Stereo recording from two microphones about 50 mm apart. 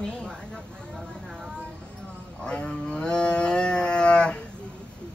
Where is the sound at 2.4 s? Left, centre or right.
Centre.